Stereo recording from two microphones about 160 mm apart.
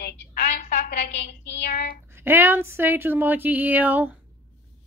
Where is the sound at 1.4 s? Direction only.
90° left.